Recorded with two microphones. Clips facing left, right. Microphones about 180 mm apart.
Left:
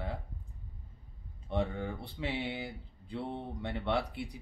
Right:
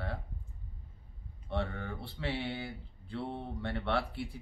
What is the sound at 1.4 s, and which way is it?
Speech, 15° left (ahead or behind).